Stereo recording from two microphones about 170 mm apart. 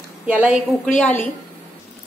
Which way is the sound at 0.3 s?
10° right (ahead or behind).